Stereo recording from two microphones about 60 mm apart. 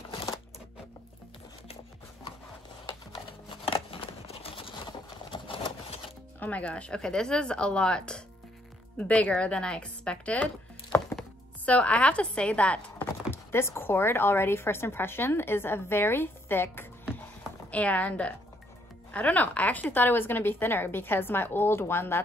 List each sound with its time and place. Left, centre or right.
6.4 s a woman's voice: left
13.3 s speech: left
17.6 s a woman's voice: left